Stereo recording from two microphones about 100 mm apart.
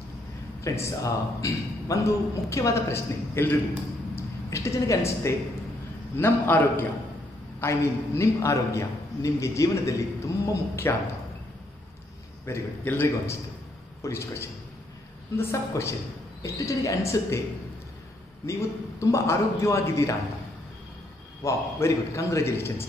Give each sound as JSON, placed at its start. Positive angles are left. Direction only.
{"t": 0.7, "sound": "a man's voice", "side_deg": 35}
{"t": 7.6, "sound": "a man's voice", "side_deg": 30}
{"t": 12.4, "sound": "a man's voice", "side_deg": 25}
{"t": 18.4, "sound": "a man's voice", "side_deg": 30}
{"t": 21.5, "sound": "a man's voice", "side_deg": 30}